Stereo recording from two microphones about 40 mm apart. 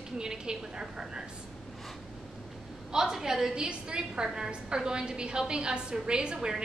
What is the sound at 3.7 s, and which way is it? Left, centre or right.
A woman's voice, right.